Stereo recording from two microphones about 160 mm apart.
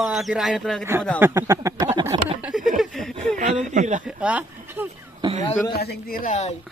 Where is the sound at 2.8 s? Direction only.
Centre (ahead or behind).